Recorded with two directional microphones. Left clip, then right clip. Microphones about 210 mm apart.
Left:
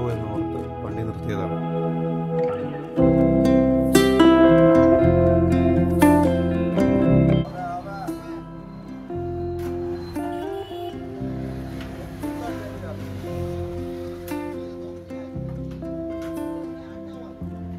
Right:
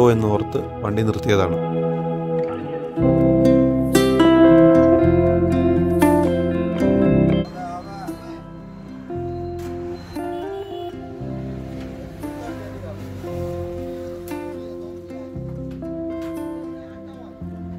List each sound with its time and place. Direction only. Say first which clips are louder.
0.9 s speech: right 13 dB; 45° right (ahead or behind)
1.6 s music: right 4 dB; centre (ahead or behind)
10.1 s music: right 4 dB; centre (ahead or behind)
16.1 s music: right 2 dB; centre (ahead or behind)